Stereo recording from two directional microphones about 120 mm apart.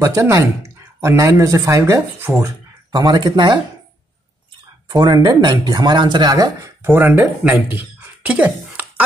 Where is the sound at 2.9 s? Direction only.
35° right (ahead or behind).